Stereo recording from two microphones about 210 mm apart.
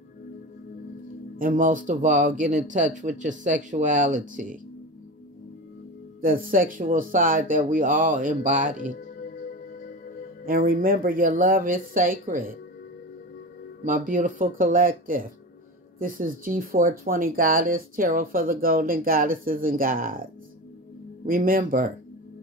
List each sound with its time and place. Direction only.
1.3 s speech: 40° right (ahead or behind)
6.2 s speech: 40° right (ahead or behind)
10.4 s speech: 45° right (ahead or behind)
13.8 s speech: 40° right (ahead or behind)
21.3 s speech: 40° right (ahead or behind)